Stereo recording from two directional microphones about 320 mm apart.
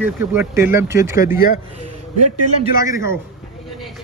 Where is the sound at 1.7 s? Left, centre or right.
Right.